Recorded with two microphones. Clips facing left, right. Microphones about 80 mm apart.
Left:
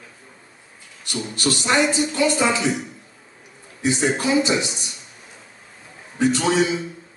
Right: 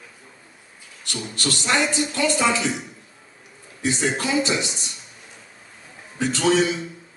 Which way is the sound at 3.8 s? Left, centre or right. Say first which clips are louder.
Left 3 dB; centre.